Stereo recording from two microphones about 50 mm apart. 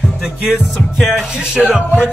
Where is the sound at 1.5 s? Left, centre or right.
Centre.